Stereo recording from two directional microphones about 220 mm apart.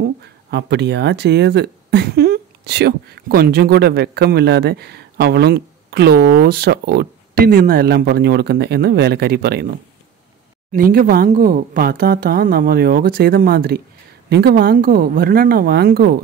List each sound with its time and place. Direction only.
0.5 s speech: 50° right (ahead or behind)
10.7 s speech: 40° right (ahead or behind)